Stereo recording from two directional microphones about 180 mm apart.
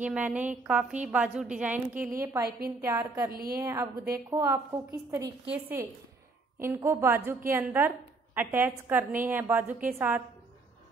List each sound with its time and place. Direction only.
0.0 s a woman's voice: 10° right (ahead or behind)
3.3 s a woman's voice: 55° right (ahead or behind)
3.5 s a woman's voice: 15° right (ahead or behind)